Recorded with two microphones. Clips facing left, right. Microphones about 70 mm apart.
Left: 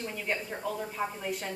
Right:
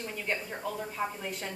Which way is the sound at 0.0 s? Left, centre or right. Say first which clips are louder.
Left 1 dB; centre.